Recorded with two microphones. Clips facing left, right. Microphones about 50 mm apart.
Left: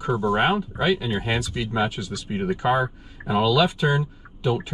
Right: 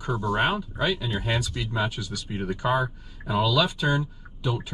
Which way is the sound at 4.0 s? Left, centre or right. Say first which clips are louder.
Left 4 dB; left.